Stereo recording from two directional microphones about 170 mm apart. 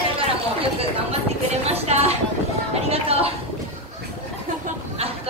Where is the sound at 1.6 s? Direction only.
40° right (ahead or behind).